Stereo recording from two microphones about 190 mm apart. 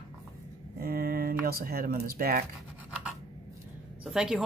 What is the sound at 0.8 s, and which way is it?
Speech, 50° right (ahead or behind).